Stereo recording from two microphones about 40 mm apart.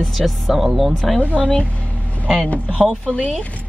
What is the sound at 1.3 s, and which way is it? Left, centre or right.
Speech, left.